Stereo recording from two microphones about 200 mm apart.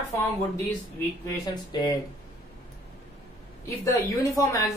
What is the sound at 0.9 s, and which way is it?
Speech, 15° left (ahead or behind).